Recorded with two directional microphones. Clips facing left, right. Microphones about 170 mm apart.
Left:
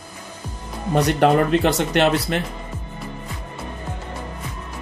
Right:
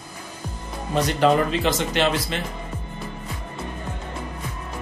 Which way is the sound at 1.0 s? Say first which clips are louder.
Left 2 dB; 60° left (ahead or behind).